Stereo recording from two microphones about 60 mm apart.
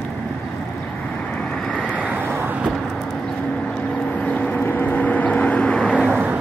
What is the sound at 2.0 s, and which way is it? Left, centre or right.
Vehicle, right.